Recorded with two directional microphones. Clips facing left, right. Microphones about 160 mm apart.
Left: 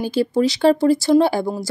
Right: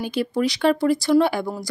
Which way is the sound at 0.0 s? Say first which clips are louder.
Left 4 dB; 30° left (ahead or behind).